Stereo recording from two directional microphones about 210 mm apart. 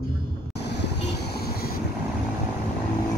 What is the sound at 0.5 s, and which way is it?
Vehicle, 55° left (ahead or behind).